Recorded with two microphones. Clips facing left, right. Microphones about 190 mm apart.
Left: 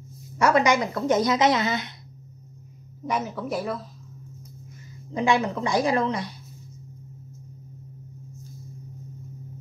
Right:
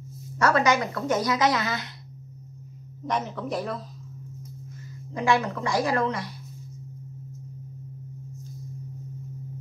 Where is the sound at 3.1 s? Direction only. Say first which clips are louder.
Left 1 dB; 5° left (ahead or behind).